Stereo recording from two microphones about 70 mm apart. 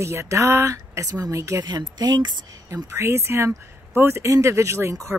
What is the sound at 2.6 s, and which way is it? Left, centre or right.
Speech, right.